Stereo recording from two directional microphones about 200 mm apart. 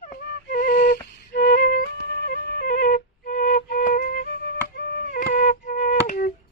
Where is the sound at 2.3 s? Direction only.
50° left (ahead or behind).